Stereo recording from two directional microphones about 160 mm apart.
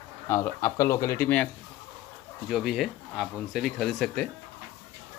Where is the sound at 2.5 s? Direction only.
Centre (ahead or behind).